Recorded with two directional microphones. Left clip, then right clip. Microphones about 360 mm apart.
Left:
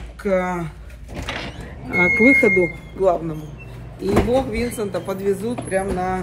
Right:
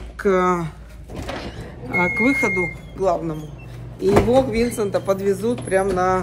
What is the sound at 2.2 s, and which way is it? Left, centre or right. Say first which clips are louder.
Speech: left 7 dB; right.